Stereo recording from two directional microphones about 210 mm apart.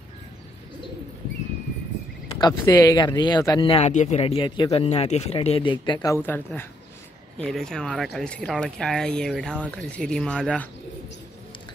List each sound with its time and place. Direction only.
2.3 s speech: 20° left (ahead or behind)